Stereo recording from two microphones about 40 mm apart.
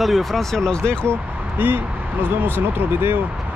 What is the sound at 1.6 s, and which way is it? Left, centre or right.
Speech, right.